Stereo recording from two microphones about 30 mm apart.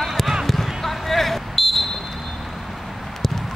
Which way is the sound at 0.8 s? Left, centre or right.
Centre.